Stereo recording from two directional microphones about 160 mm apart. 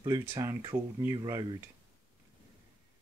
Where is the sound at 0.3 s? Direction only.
20° right (ahead or behind).